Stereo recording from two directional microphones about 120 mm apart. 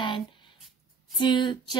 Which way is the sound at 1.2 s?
40° left (ahead or behind).